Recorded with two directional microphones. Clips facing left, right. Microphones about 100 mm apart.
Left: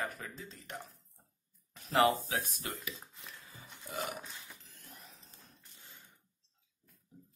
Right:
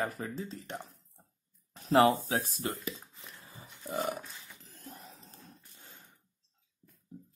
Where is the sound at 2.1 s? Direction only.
35° right (ahead or behind).